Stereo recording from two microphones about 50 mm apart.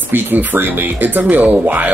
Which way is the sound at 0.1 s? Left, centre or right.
Right.